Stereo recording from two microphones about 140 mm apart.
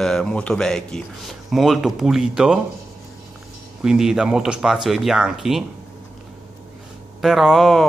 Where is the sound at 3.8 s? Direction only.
5° right (ahead or behind).